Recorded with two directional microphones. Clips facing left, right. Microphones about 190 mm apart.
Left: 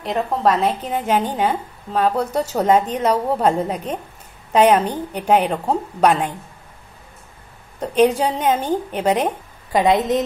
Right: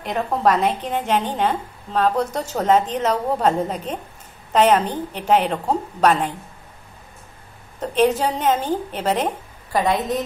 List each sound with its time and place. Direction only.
0.0 s a woman's voice: centre (ahead or behind)
7.8 s a woman's voice: 10° left (ahead or behind)